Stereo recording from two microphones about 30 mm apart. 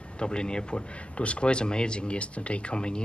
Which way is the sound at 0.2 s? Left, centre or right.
Left.